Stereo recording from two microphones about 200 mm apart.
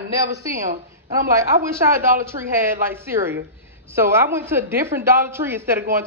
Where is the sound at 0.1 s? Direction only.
15° right (ahead or behind).